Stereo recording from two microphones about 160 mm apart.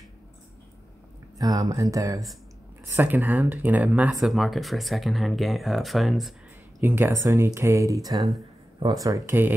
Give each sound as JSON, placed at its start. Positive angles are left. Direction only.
{"t": 1.4, "sound": "speech", "side_deg": -25}
{"t": 6.8, "sound": "speech", "side_deg": -15}